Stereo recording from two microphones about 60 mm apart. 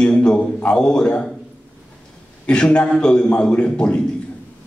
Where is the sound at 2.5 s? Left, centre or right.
Centre.